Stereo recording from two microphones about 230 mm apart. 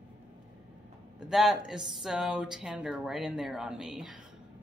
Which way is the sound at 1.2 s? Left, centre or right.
Centre.